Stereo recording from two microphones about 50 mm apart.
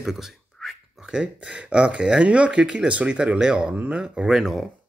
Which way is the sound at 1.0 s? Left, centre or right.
Centre.